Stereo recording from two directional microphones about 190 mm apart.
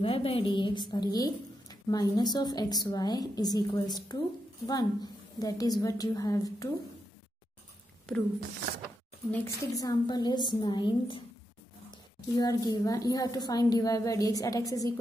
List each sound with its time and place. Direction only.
0.0 s a woman's voice: 30° left (ahead or behind)
8.4 s speech: 55° right (ahead or behind)
9.8 s a woman's voice: 20° left (ahead or behind)